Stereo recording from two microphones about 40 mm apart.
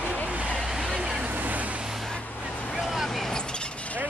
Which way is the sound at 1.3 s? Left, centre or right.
Right.